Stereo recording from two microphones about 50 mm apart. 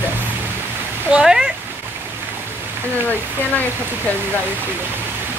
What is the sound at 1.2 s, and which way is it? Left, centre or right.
Speech, centre.